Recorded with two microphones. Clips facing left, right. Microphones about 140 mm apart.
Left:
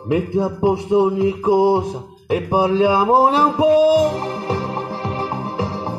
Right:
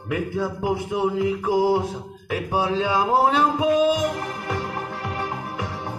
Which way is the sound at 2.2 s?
35° left (ahead or behind).